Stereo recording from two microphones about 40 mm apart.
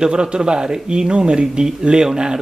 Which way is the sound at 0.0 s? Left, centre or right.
Right.